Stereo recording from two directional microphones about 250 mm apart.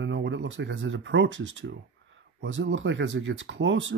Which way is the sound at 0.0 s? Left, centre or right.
Right.